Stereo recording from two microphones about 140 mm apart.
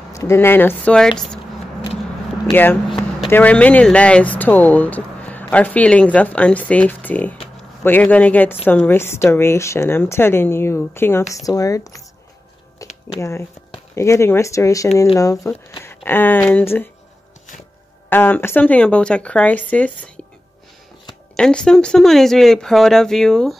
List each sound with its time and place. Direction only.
0.1 s speech: 20° left (ahead or behind); by 1.4 s 5° left (ahead or behind)
2.5 s speech: 15° left (ahead or behind)
2.9 s a sound: centre (ahead or behind)
3.3 s speech: 10° left (ahead or behind)
12.8 s a sound: 25° left (ahead or behind)
13.2 s speech: 20° left (ahead or behind)
18.1 s speech: 15° left (ahead or behind)
21.4 s speech: 5° left (ahead or behind)